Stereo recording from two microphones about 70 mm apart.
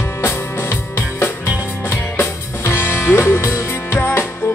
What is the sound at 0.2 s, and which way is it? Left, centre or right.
Music, left.